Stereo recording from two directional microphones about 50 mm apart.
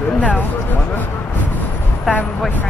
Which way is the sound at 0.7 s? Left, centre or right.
Left.